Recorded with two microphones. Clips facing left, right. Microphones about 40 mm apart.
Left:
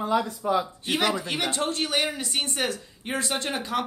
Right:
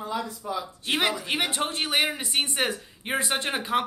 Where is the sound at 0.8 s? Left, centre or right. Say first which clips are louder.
Even; right.